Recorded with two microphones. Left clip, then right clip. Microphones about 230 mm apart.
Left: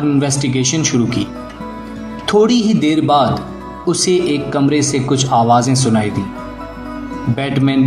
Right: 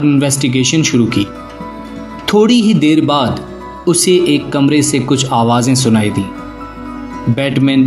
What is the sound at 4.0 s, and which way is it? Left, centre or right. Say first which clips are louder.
Speech: right 4 dB; right.